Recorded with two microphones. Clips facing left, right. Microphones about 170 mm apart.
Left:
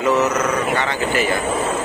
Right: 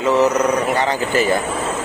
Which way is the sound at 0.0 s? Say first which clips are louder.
Right 2 dB; 30° right (ahead or behind).